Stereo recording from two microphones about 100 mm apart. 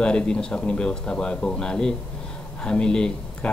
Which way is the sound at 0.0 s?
10° left (ahead or behind).